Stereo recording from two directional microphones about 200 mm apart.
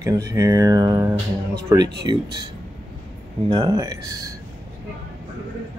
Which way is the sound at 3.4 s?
20° right (ahead or behind).